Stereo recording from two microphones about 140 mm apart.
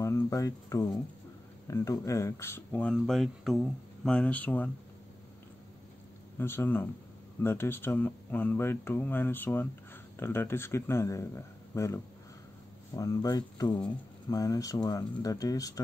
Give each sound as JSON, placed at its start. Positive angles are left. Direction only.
{"t": 0.0, "sound": "a man's voice", "side_deg": 25}
{"t": 6.3, "sound": "a man's voice", "side_deg": 15}